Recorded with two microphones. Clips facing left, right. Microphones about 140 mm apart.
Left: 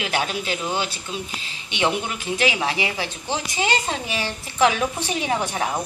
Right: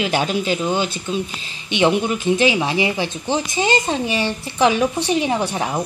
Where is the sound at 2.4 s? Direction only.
20° right (ahead or behind).